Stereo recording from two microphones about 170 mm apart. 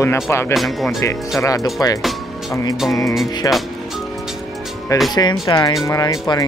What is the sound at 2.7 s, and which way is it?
Speech, centre (ahead or behind).